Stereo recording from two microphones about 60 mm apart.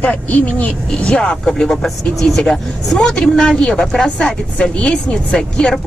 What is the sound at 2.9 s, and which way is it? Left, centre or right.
Speech, centre.